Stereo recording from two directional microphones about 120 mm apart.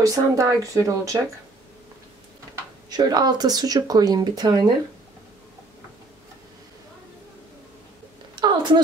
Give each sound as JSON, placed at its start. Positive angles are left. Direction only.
{"t": 0.0, "sound": "speech", "side_deg": -30}
{"t": 2.9, "sound": "speech", "side_deg": -35}
{"t": 8.4, "sound": "a sound", "side_deg": -40}